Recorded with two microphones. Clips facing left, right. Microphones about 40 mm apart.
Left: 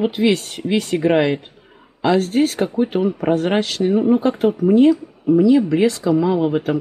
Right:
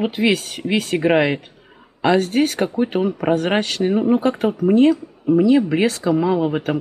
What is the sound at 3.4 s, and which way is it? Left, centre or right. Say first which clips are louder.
Speech: left 1 dB; centre.